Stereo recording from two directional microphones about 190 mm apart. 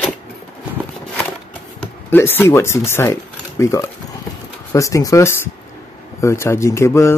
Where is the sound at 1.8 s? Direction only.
10° left (ahead or behind).